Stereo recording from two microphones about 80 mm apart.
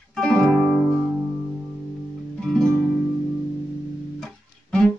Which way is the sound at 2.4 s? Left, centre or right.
Centre.